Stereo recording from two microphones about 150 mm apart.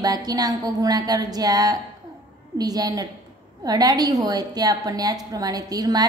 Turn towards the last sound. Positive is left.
turn(degrees=-25)  # may be behind; listen again after turning